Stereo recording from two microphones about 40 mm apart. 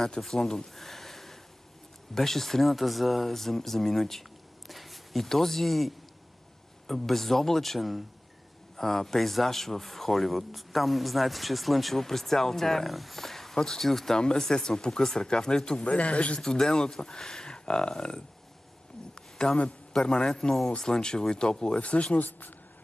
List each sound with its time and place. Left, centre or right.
0.0 s speech: centre
15.8 s speech: left
16.3 s speech: centre
19.3 s a sound: centre
19.9 s speech: centre
21.8 s speech: left